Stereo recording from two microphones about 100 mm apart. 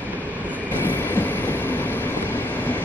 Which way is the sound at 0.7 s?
20° left (ahead or behind).